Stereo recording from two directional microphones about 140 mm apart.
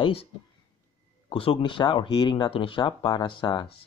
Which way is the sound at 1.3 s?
40° left (ahead or behind).